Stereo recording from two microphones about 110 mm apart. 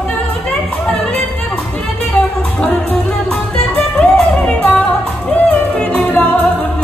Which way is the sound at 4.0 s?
5° left (ahead or behind).